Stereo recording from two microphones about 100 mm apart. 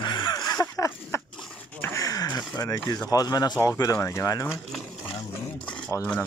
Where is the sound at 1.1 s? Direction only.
30° left (ahead or behind).